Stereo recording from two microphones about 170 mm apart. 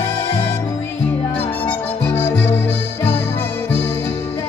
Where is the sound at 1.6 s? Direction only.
10° left (ahead or behind).